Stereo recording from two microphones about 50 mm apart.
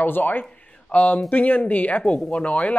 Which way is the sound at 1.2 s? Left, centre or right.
Left.